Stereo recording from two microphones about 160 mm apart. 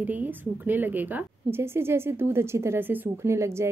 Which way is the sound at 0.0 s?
10° right (ahead or behind).